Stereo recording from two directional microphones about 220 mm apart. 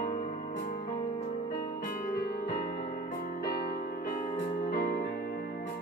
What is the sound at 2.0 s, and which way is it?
Music, 40° left (ahead or behind).